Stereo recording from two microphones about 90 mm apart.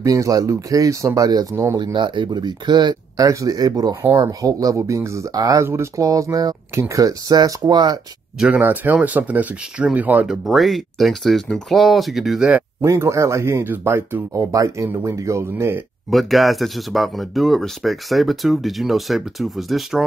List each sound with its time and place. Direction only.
0.0 s speech: 40° right (ahead or behind)
1.8 s speech: 55° right (ahead or behind)
3.3 s speech: 40° right (ahead or behind)
8.4 s speech: 15° right (ahead or behind)
10.2 s speech: centre (ahead or behind)
12.8 s speech: 35° right (ahead or behind)
16.1 s speech: centre (ahead or behind)